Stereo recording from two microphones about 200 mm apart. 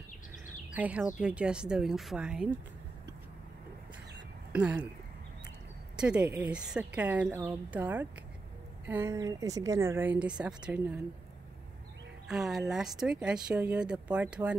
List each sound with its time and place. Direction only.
0.7 s speech: 5° right (ahead or behind)
4.5 s speech: 5° right (ahead or behind)
5.9 s speech: 5° right (ahead or behind)
12.3 s speech: centre (ahead or behind)